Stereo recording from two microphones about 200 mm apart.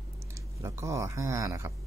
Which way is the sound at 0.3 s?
15° right (ahead or behind).